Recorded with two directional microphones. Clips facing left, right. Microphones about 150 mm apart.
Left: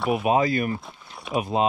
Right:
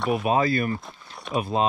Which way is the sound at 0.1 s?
15° left (ahead or behind).